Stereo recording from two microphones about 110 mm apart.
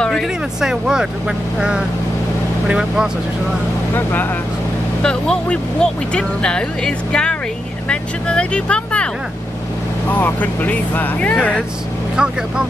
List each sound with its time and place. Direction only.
0.0 s speech: 5° left (ahead or behind)
3.9 s speech: 20° left (ahead or behind)
10.1 s speech: 15° left (ahead or behind)
12.2 s speech: 10° right (ahead or behind)